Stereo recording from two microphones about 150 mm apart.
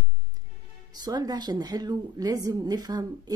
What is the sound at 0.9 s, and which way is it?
Speech, 25° right (ahead or behind).